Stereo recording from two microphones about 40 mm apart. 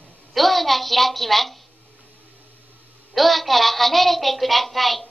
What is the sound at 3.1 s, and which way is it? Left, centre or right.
A woman's voice, centre.